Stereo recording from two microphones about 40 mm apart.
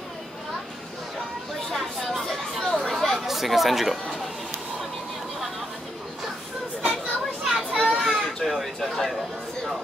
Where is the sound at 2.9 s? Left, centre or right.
Centre.